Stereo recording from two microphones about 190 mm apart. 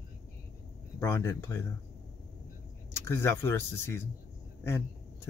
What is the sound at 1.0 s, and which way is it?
Speech, 15° left (ahead or behind).